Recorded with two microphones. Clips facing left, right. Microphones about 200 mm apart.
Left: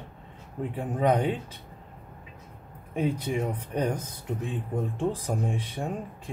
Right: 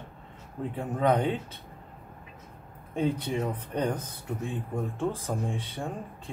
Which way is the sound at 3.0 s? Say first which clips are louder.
Left 1 dB; 10° left (ahead or behind).